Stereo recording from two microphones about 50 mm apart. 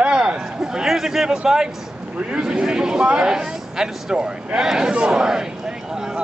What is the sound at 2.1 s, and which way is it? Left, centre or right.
A man's voice, right.